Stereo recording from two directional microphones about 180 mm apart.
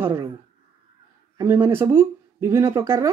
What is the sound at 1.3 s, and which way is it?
Speech, 10° right (ahead or behind).